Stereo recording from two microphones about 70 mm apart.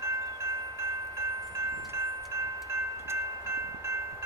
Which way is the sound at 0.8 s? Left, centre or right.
Right.